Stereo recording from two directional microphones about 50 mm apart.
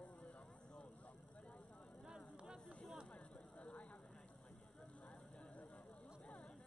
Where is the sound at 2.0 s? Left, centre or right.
Centre.